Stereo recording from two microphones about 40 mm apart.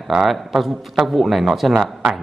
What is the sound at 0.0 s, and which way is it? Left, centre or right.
A man's voice, centre.